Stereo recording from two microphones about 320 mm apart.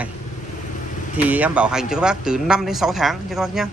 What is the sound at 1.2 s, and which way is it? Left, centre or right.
Speech, centre.